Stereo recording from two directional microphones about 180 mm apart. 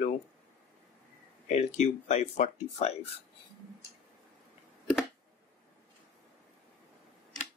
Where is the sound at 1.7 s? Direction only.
40° left (ahead or behind).